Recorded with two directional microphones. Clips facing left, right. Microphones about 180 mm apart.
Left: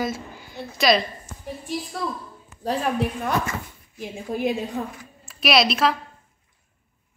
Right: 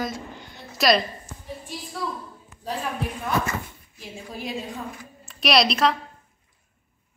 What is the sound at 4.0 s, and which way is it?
Speech, 50° left (ahead or behind).